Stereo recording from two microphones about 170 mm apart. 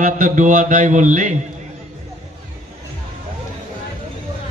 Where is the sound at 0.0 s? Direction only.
50° right (ahead or behind).